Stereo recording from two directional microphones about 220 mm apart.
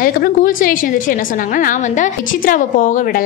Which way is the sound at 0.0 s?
40° left (ahead or behind).